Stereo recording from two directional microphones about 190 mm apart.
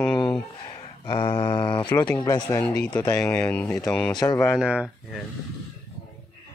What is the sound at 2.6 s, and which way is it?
Speech, 5° left (ahead or behind).